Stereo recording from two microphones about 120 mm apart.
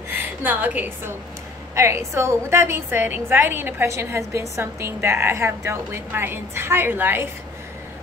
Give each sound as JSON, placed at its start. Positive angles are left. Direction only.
{"t": 0.1, "sound": "a woman's voice", "side_deg": -15}